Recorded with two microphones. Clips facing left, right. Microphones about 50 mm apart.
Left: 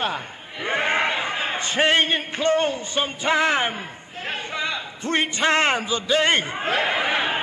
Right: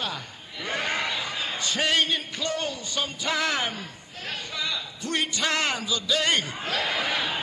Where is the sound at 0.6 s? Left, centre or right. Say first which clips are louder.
Left 6 dB; left.